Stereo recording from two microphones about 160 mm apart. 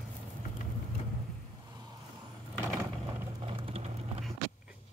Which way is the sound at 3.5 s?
35° right (ahead or behind).